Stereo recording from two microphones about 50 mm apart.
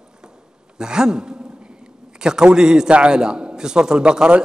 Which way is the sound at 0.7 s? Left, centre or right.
Centre.